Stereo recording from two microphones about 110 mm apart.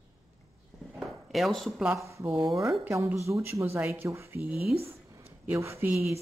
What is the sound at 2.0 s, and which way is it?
Speech, 25° right (ahead or behind).